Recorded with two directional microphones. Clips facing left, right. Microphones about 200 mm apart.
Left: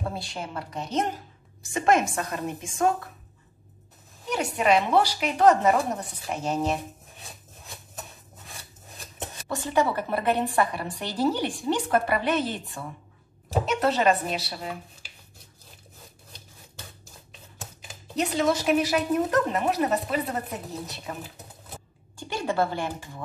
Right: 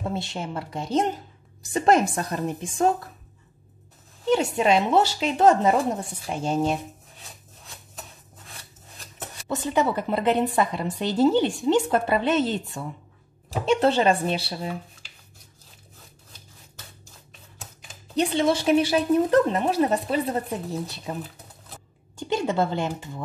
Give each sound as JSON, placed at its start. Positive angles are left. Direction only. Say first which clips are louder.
{"t": 0.1, "sound": "a woman's voice", "louder": "right 4 dB", "side_deg": -25}
{"t": 4.3, "sound": "a woman's voice", "louder": "right 3 dB", "side_deg": -25}
{"t": 9.5, "sound": "a woman's voice", "louder": "right 1 dB", "side_deg": -20}
{"t": 18.1, "sound": "a woman's voice", "louder": "right 3 dB", "side_deg": -30}
{"t": 22.3, "sound": "a woman's voice", "louder": "right 3 dB", "side_deg": -20}